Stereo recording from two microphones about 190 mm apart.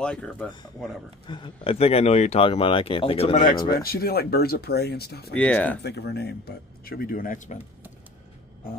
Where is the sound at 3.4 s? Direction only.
50° left (ahead or behind).